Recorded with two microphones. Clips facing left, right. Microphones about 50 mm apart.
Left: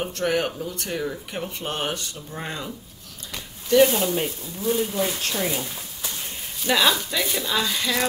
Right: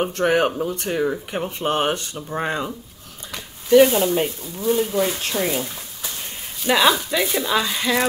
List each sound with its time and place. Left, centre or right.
0.0 s speech: right
3.6 s speech: centre